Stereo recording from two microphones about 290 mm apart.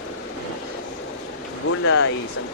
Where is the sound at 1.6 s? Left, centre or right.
Left.